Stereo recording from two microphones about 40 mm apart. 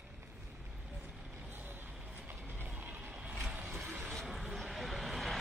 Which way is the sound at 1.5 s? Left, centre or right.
Right.